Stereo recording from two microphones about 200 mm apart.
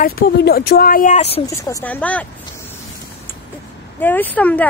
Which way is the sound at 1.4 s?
10° left (ahead or behind).